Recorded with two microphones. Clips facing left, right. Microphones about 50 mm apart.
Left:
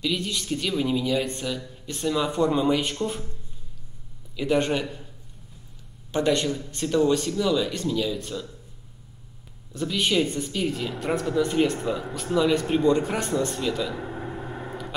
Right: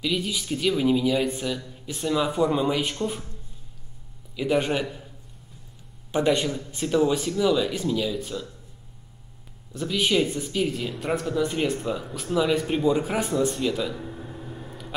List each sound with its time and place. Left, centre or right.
0.0 s a woman's voice: centre
4.4 s a woman's voice: centre
6.1 s speech: centre
9.7 s a woman's voice: centre
13.9 s a sound: left